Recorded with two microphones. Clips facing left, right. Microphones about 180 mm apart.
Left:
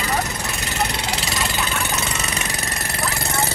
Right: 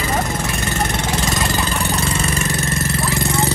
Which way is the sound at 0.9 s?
45° right (ahead or behind).